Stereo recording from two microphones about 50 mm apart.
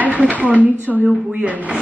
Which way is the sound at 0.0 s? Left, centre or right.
Right.